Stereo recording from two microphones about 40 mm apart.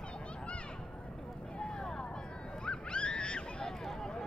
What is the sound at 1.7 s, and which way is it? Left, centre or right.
Vehicle, centre.